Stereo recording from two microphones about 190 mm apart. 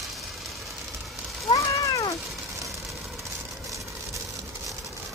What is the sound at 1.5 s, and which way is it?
Cat, 15° left (ahead or behind).